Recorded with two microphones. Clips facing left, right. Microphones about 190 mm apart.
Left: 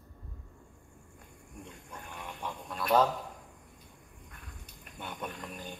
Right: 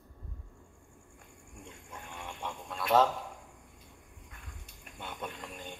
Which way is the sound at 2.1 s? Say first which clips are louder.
Even; 25° right (ahead or behind).